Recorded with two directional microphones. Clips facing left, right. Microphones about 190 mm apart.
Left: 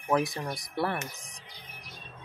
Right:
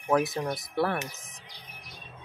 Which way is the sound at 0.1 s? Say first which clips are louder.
Right 2 dB; 5° right (ahead or behind).